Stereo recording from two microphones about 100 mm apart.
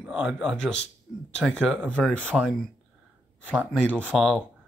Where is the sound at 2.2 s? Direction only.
10° right (ahead or behind).